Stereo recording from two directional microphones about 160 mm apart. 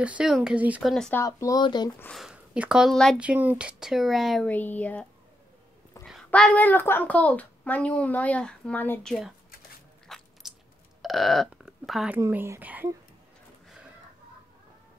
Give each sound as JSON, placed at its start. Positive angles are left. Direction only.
{"t": 0.0, "sound": "speech", "side_deg": -5}
{"t": 0.9, "sound": "speech", "side_deg": 5}
{"t": 1.2, "sound": "speech", "side_deg": 20}
{"t": 2.1, "sound": "speech", "side_deg": -5}
{"t": 3.2, "sound": "speech", "side_deg": -10}
{"t": 4.5, "sound": "a woman's voice", "side_deg": 10}
{"t": 6.0, "sound": "a woman's voice", "side_deg": 0}
{"t": 10.0, "sound": "biting", "side_deg": 0}
{"t": 11.0, "sound": "burping", "side_deg": 0}
{"t": 12.2, "sound": "speech", "side_deg": -15}